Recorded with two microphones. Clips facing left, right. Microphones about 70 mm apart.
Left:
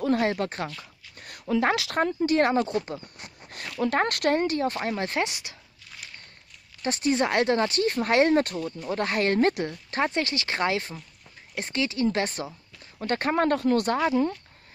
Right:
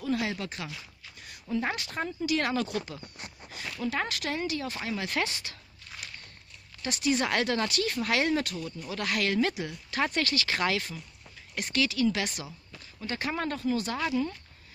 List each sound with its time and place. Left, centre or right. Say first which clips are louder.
0.0 s speech: left 7 dB; left
1.2 s speech: left 7 dB; left
2.1 s speech: left 6 dB; left
3.8 s speech: left 8 dB; left
5.1 s speech: left 3 dB; centre
6.8 s speech: left 4 dB; left
9.7 s speech: left 3 dB; left
10.0 s speech: left 1 dB; left
13.0 s speech: left 8 dB; left